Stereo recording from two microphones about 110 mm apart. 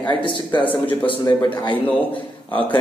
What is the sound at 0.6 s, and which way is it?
Speech, 15° left (ahead or behind).